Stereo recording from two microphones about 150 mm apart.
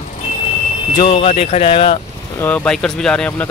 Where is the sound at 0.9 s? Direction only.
35° left (ahead or behind).